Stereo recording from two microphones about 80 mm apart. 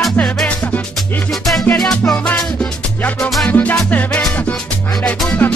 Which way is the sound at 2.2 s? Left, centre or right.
Centre.